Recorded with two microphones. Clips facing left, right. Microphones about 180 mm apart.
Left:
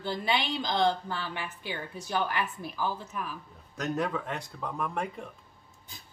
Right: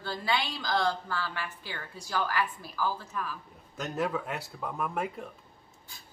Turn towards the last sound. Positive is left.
turn(degrees=-5)  # may be behind; listen again after turning